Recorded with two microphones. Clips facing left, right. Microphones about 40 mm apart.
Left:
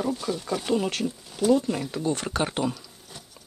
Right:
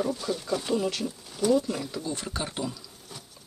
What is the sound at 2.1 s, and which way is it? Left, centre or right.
Speech, left.